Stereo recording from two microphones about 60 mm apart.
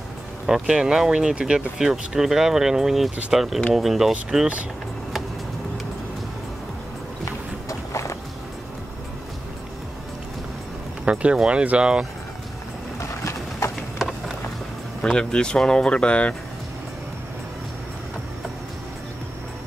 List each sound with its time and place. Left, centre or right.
0.5 s speech: centre
7.2 s boat: left
11.1 s speech: centre
13.2 s clip-clop: left
15.0 s speech: centre